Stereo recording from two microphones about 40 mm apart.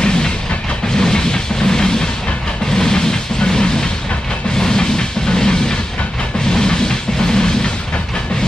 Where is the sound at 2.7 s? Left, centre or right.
Centre.